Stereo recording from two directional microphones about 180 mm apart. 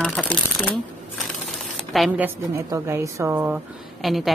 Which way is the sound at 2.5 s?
20° right (ahead or behind).